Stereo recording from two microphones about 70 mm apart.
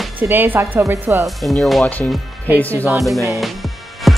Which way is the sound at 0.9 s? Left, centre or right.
Right.